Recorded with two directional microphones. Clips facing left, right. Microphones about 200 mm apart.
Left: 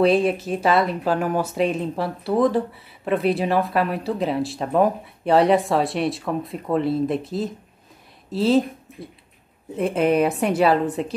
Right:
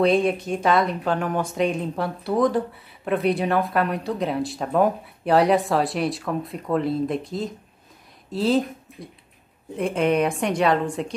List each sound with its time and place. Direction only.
0.0 s speech: 5° left (ahead or behind)